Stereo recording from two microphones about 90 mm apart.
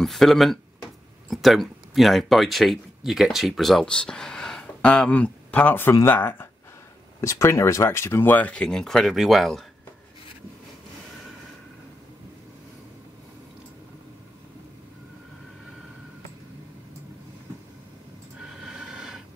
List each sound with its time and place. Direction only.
0.0 s speech: centre (ahead or behind); by 6.3 s 20° left (ahead or behind)
7.2 s speech: 35° left (ahead or behind); by 8.6 s 15° left (ahead or behind)
8.6 s speech: 5° left (ahead or behind)
18.4 s a sound: 5° right (ahead or behind)